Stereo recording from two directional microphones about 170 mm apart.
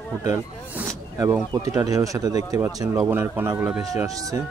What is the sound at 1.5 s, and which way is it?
Speech, 20° right (ahead or behind).